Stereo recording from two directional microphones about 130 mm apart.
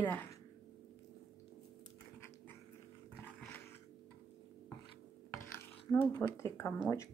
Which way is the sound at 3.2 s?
15° left (ahead or behind).